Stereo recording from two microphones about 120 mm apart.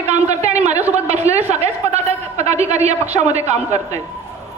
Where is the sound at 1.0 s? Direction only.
65° right (ahead or behind).